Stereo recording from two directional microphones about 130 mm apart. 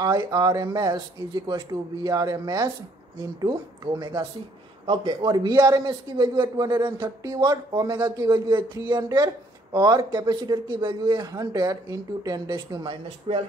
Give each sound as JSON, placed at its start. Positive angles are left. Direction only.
{"t": 0.0, "sound": "speech", "side_deg": -30}